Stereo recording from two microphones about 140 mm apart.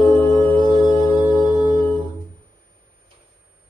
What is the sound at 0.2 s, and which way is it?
Music, 25° left (ahead or behind).